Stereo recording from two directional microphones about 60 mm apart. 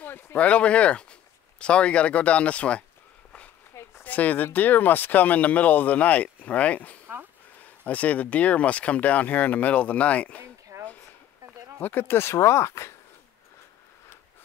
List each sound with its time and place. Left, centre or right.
0.0 s speech: left
0.4 s speech: left
4.0 s speech: left
10.4 s a sound: right
11.8 s speech: left